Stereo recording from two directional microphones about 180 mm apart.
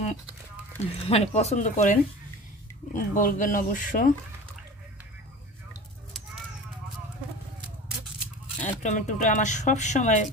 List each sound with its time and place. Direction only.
1.0 s speech: 35° left (ahead or behind)
8.6 s speech: 40° left (ahead or behind)